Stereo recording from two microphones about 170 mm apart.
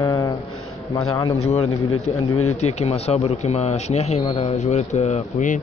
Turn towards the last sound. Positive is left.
turn(degrees=50)  # may be behind; listen again after turning